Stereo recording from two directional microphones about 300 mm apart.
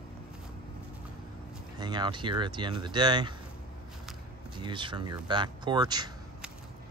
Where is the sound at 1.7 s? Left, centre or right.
Centre.